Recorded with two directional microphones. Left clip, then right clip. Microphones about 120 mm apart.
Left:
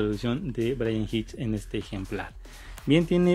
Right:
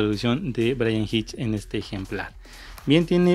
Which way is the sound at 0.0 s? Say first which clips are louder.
Right 5 dB; 35° right (ahead or behind).